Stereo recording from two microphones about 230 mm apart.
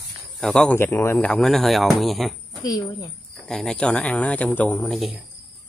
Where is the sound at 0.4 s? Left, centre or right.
Centre.